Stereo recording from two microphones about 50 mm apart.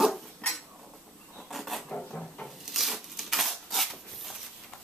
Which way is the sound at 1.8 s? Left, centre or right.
Centre.